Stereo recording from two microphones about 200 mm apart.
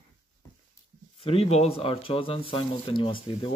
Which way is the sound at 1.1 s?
30° left (ahead or behind).